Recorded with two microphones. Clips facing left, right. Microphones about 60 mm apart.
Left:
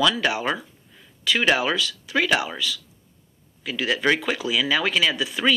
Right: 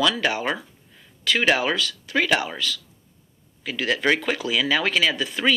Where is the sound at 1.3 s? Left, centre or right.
Right.